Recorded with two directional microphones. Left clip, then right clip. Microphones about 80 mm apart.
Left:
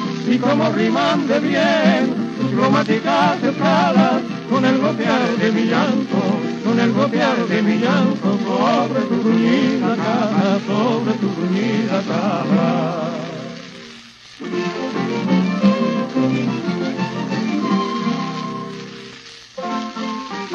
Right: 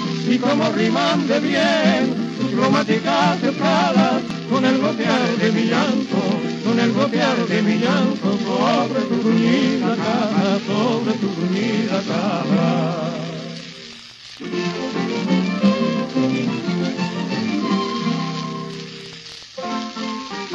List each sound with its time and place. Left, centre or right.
0.0 s music: right
14.5 s music: right